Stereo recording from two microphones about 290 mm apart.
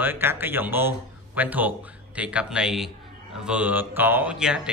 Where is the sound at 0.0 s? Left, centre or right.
Centre.